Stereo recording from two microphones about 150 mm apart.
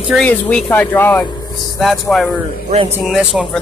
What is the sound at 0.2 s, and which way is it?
Speech, 10° left (ahead or behind).